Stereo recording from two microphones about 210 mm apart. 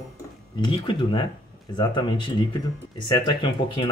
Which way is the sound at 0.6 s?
20° left (ahead or behind).